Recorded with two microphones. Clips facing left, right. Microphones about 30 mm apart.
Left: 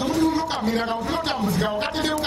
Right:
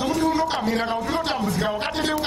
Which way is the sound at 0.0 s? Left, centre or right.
Centre.